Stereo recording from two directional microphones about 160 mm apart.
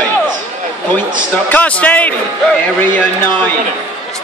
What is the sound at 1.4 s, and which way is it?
Speech, 10° left (ahead or behind).